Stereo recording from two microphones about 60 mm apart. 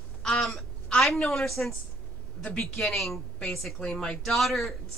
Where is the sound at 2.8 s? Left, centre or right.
Centre.